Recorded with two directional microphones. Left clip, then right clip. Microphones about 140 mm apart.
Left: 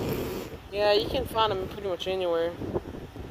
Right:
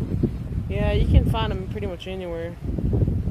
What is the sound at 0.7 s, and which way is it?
Speech, 35° left (ahead or behind).